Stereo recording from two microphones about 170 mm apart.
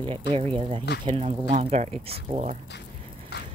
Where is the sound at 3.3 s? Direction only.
75° left (ahead or behind).